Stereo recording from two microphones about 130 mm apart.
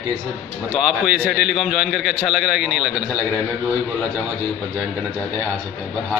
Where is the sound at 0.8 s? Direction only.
5° right (ahead or behind).